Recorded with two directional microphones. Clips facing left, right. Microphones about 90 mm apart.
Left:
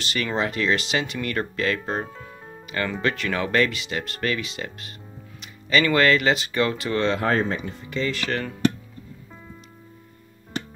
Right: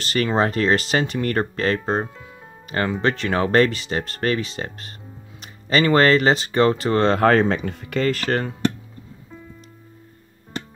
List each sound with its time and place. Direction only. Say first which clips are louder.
0.0 s speech: right 5 dB; 40° right (ahead or behind)
7.2 s speech: right 6 dB; 80° right; by 8.5 s 40° right (ahead or behind)